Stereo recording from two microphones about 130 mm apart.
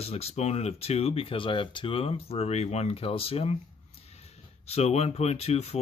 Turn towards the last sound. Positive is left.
turn(degrees=55)  # may be behind; listen again after turning